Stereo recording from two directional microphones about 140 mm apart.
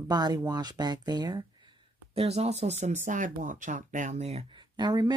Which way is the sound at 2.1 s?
45° right (ahead or behind).